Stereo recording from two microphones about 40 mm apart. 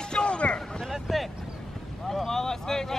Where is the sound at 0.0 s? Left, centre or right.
Left.